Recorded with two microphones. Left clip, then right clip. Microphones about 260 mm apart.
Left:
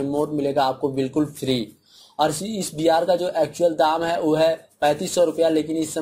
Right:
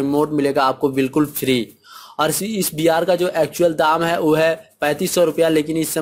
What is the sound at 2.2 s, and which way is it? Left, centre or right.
Speech, right.